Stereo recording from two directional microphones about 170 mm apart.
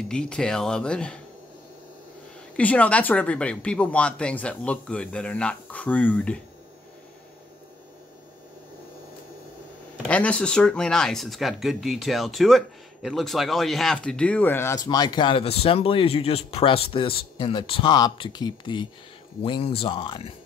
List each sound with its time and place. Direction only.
0.1 s speech: 5° left (ahead or behind)
2.5 s speech: 10° left (ahead or behind)
10.0 s speech: 5° left (ahead or behind); by 20.3 s 30° left (ahead or behind)